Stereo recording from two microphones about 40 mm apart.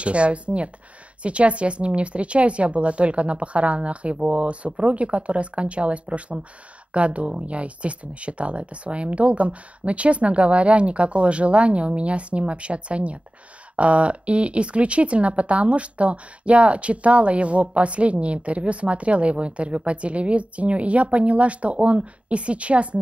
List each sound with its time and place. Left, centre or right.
0.0 s speech: right